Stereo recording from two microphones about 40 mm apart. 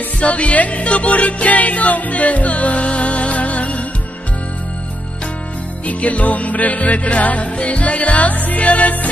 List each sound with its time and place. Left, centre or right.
0.2 s music: left
5.9 s music: left